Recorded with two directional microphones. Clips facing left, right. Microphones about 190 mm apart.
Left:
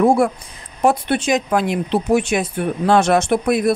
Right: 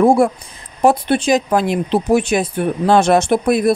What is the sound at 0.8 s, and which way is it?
Speech, 35° right (ahead or behind).